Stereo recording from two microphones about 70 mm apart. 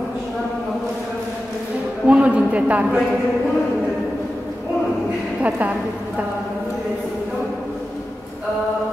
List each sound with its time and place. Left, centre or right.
2.0 s a man's voice: centre
5.4 s a man's voice: right